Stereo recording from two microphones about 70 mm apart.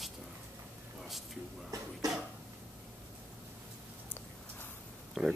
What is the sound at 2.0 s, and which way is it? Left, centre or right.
Cough, right.